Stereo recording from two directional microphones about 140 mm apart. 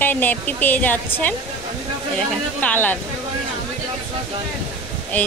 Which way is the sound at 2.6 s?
15° left (ahead or behind).